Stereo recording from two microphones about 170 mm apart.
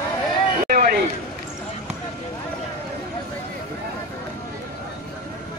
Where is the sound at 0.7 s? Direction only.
65° right (ahead or behind).